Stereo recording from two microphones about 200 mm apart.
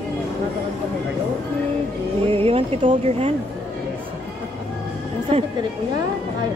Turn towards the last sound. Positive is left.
turn(degrees=-30)  # may be behind; listen again after turning